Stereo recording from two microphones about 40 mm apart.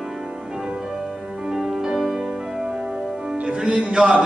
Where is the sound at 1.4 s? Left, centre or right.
Centre.